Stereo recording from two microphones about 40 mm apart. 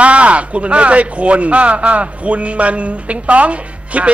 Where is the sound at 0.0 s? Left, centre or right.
Right.